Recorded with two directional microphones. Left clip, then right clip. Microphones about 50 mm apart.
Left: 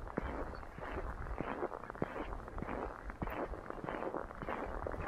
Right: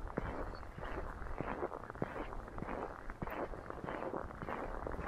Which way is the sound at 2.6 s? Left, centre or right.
Right.